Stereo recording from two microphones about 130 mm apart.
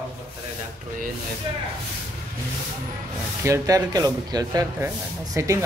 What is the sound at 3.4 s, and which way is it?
Speech, 25° right (ahead or behind).